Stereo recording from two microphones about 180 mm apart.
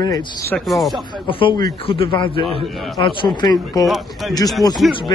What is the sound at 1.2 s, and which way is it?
A man's voice, 30° left (ahead or behind).